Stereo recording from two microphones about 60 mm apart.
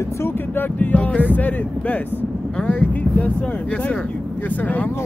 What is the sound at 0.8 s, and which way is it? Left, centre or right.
Speech, left.